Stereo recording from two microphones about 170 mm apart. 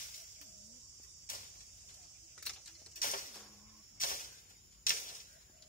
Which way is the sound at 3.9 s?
55° left (ahead or behind).